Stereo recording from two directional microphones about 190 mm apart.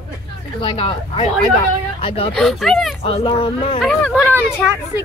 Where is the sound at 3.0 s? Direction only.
25° left (ahead or behind).